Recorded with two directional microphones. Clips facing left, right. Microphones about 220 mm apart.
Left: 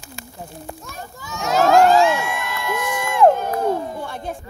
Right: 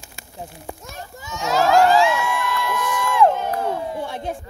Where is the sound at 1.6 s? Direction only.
50° left (ahead or behind).